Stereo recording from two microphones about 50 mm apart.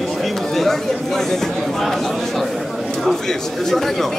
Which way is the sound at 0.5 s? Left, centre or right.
Centre.